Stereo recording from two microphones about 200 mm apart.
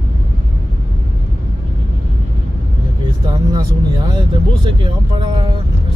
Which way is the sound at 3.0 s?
20° right (ahead or behind).